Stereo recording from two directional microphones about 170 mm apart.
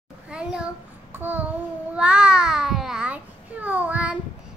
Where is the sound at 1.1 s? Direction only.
10° right (ahead or behind).